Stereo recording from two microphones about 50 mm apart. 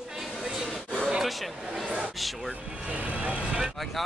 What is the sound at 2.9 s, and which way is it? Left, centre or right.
Speech, right.